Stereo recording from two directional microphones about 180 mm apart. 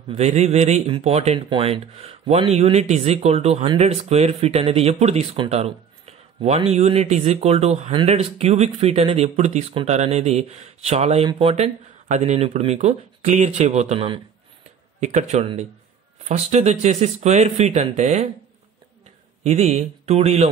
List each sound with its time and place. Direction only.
0.1 s speech: 35° right (ahead or behind)
15.0 s speech: 40° right (ahead or behind)
19.4 s speech: 35° right (ahead or behind)